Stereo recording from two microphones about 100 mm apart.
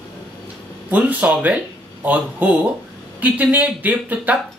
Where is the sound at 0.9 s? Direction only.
15° right (ahead or behind).